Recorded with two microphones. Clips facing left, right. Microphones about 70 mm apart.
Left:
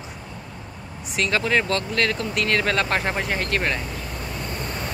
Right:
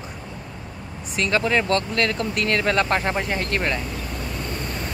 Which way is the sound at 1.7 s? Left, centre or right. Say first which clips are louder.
Right 1 dB; right.